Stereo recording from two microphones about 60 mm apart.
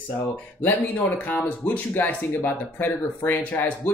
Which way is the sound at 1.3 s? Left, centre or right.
Left.